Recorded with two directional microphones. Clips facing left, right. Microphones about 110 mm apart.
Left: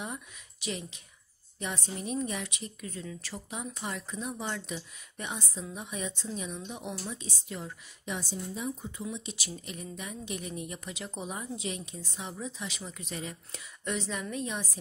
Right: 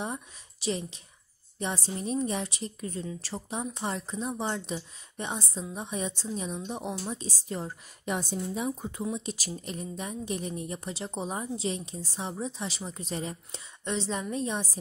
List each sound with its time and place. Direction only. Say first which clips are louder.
0.0 s speech: right 4 dB; 30° right (ahead or behind)
8.0 s a woman's voice: right 5 dB; 50° right (ahead or behind)
9.0 s speech: right 5 dB; 45° right (ahead or behind)